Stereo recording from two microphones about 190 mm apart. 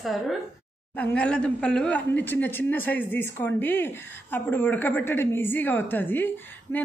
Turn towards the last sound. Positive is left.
turn(degrees=15)  # may be behind; listen again after turning